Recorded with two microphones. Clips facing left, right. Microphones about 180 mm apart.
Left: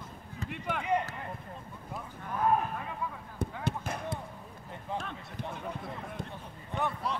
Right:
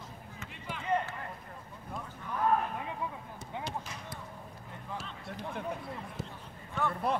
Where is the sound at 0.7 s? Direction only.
60° left (ahead or behind).